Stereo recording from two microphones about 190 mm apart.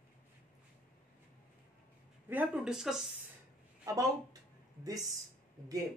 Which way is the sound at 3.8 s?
20° right (ahead or behind).